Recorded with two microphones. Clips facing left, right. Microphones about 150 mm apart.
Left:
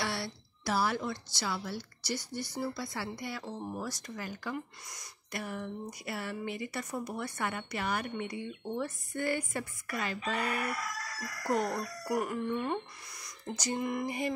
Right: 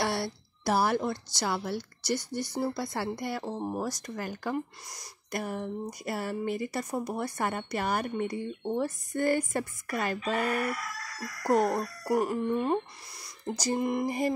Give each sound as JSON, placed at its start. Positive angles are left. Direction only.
{"t": 0.0, "sound": "a woman's voice", "side_deg": -45}
{"t": 12.1, "sound": "speech", "side_deg": -30}